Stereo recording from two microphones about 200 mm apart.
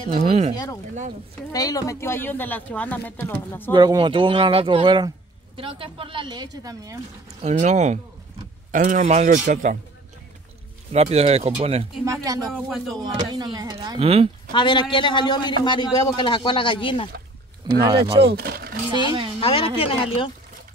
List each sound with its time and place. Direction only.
0.1 s a man's voice: 30° right (ahead or behind)
1.5 s speech: 20° left (ahead or behind)
3.7 s speech: 20° right (ahead or behind)
7.4 s a man's voice: 35° right (ahead or behind)
10.9 s a man's voice: 30° right (ahead or behind)
12.0 s speech: 15° right (ahead or behind)
12.4 s speech: centre (ahead or behind)
13.3 s speech: 20° right (ahead or behind)
14.5 s a man's voice: 20° left (ahead or behind)
17.6 s speech: 20° right (ahead or behind)
18.2 s speech: 50° right (ahead or behind)
19.0 s speech: 25° right (ahead or behind)
19.4 s a man's voice: 30° left (ahead or behind)